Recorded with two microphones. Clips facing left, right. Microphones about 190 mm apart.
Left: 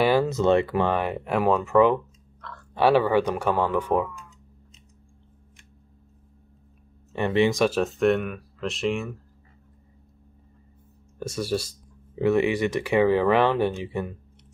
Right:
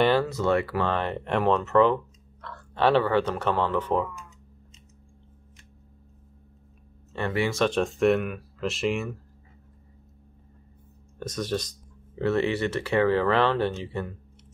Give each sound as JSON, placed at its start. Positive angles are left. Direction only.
{"t": 0.0, "sound": "speech", "side_deg": 10}
{"t": 0.3, "sound": "speech", "side_deg": 20}
{"t": 7.1, "sound": "speech", "side_deg": 15}
{"t": 7.6, "sound": "speech", "side_deg": 5}
{"t": 11.1, "sound": "speech", "side_deg": 10}